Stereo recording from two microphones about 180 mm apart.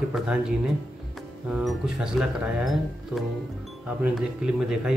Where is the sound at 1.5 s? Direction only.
5° right (ahead or behind).